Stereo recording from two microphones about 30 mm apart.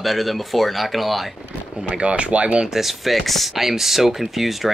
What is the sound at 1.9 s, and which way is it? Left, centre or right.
Speech, right.